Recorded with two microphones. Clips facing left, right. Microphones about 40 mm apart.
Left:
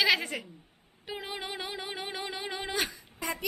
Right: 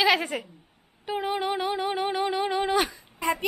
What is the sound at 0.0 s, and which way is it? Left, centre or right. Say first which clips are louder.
Speech: right 4 dB; centre.